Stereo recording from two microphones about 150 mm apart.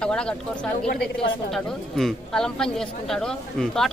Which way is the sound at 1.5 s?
Centre (ahead or behind).